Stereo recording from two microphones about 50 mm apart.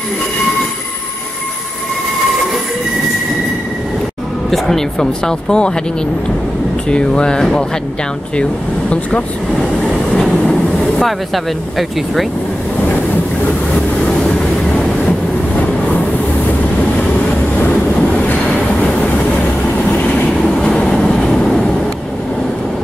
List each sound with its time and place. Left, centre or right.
4.5 s speech: centre
6.9 s speech: centre
10.1 s train: centre
11.0 s speech: centre
18.3 s train: left
19.9 s train: left
20.4 s train: centre